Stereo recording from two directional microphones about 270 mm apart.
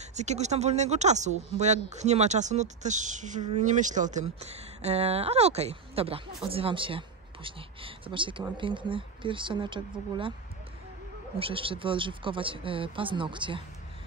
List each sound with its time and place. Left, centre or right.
0.1 s speech: right
11.3 s speech: centre